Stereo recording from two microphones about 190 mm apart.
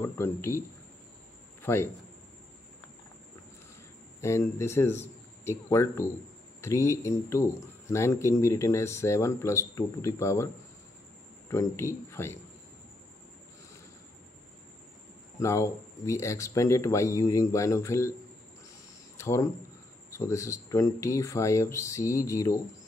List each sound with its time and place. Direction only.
0.0 s a man's voice: 15° left (ahead or behind)
4.2 s speech: 15° left (ahead or behind)
15.3 s speech: 15° left (ahead or behind)
19.1 s speech: 15° left (ahead or behind)